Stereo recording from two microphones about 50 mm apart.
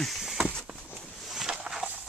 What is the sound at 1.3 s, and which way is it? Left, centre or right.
Walk, centre.